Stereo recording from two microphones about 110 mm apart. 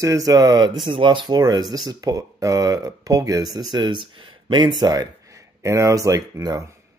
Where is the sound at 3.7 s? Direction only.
45° right (ahead or behind).